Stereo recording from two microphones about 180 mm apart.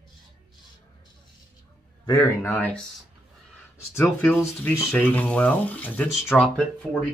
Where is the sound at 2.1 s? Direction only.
20° left (ahead or behind).